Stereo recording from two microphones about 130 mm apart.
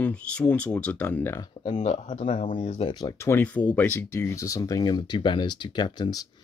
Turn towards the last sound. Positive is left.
turn(degrees=30)  # may be behind; listen again after turning